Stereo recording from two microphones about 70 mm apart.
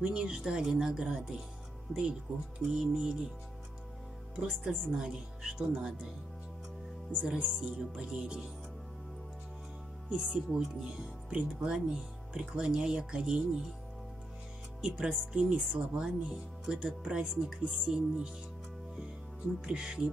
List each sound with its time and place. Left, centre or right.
0.0 s speech: centre
2.7 s speech: centre
4.4 s speech: centre
7.1 s speech: centre
10.0 s speech: centre
14.8 s speech: centre
16.0 s speech: centre
19.6 s speech: centre